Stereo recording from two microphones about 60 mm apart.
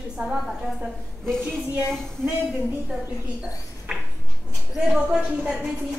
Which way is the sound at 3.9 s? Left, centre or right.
Centre.